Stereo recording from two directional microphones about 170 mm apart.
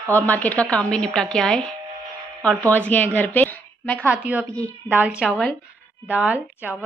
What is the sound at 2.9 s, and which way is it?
Speech, 10° left (ahead or behind).